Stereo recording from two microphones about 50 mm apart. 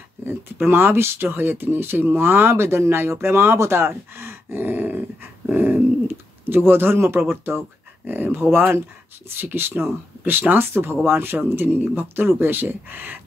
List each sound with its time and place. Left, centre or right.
0.2 s speech: right
5.5 s dog: right
6.4 s speech: right